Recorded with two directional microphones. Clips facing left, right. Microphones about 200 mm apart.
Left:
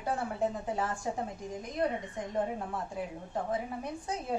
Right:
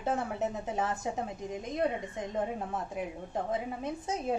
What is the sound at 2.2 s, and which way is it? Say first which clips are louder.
A woman's voice: even; 20° right (ahead or behind).